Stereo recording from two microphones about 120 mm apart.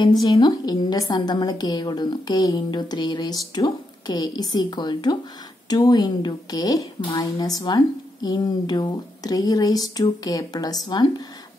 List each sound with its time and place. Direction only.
0.2 s a woman's voice: 30° left (ahead or behind)